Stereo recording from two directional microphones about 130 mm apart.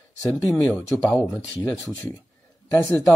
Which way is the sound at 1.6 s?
30° left (ahead or behind).